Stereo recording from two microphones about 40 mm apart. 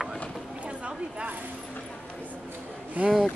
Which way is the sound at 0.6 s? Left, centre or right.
Right.